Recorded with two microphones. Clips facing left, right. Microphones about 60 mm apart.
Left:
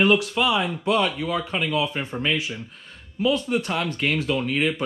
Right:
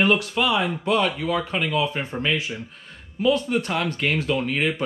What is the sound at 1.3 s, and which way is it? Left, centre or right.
Speech, right.